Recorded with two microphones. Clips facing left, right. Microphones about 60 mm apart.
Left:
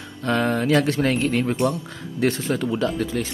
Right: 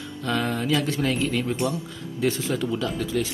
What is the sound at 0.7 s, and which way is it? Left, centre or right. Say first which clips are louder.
Speech: left 4 dB; left.